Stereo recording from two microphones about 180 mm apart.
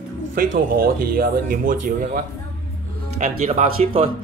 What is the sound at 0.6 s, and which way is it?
Speech, 55° right (ahead or behind).